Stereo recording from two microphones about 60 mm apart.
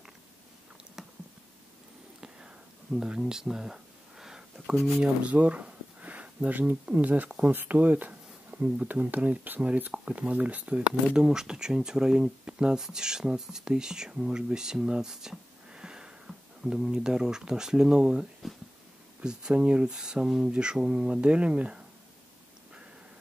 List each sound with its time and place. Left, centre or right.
1.0 s chewing: centre
2.1 s a sound: centre
5.0 s speech: right
11.1 s speech: centre
18.4 s a sound: centre
19.2 s speech: centre